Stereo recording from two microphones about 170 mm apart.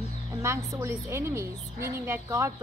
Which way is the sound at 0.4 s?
15° right (ahead or behind).